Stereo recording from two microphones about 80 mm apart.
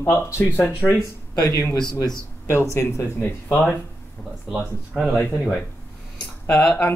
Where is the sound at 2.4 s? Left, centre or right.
Left.